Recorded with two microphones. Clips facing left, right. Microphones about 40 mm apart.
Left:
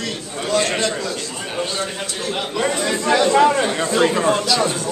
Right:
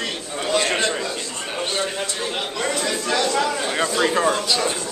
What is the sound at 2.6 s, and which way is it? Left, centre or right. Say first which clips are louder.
Speech: left 5 dB; centre.